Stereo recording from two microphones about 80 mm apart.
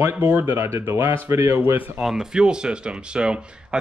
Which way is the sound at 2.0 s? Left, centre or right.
Centre.